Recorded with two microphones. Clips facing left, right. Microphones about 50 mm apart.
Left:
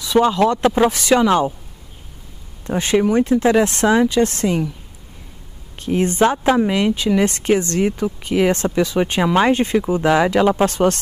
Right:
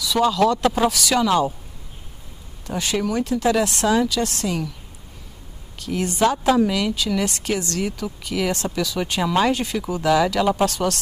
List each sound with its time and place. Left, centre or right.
0.0 s speech: left
2.6 s speech: left
5.8 s speech: left